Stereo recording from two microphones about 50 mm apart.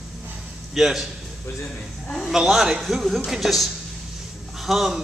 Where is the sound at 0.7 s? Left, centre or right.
Centre.